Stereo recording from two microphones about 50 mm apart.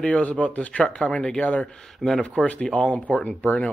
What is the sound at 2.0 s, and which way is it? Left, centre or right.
Speech, centre.